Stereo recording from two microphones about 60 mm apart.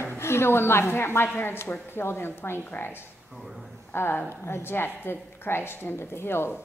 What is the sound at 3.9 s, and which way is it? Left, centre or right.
A woman's voice, left.